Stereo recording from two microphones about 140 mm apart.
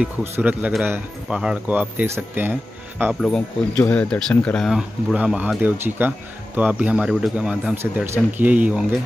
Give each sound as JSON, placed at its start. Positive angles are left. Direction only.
{"t": 0.0, "sound": "speech", "side_deg": -10}
{"t": 3.2, "sound": "speech", "side_deg": 5}
{"t": 7.7, "sound": "speech", "side_deg": -15}